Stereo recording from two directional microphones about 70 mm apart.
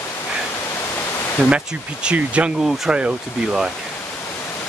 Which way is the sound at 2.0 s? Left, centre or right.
Centre.